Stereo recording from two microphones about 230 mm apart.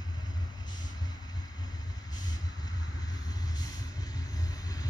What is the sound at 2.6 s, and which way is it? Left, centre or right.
Vehicle, centre.